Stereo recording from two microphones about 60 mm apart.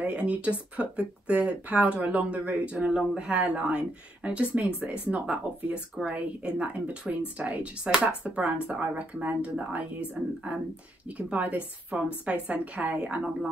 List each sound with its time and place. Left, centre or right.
0.0 s speech: centre